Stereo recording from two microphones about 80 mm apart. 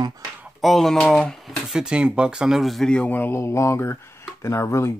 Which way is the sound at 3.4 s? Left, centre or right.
Left.